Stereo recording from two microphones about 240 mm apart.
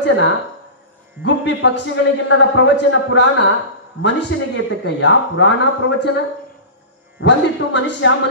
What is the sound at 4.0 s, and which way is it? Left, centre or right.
Speech, left.